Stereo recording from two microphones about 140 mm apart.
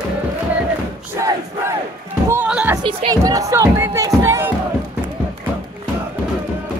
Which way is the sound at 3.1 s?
25° right (ahead or behind).